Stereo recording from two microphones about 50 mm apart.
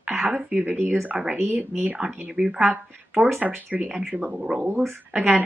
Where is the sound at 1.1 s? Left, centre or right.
Centre.